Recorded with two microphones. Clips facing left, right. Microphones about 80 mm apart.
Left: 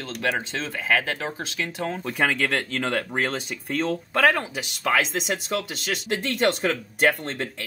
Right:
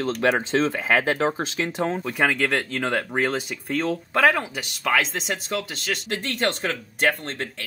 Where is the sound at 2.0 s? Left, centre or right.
Centre.